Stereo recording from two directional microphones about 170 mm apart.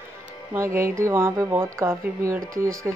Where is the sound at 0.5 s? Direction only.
15° right (ahead or behind).